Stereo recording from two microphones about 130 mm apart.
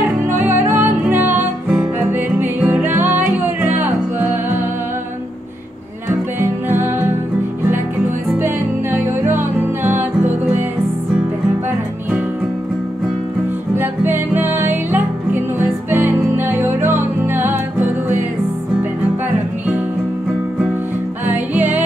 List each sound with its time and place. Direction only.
0.3 s music: 15° right (ahead or behind)
6.7 s music: 15° right (ahead or behind)
8.9 s music: 15° right (ahead or behind)
13.7 s music: 15° right (ahead or behind)
21.3 s music: 15° right (ahead or behind)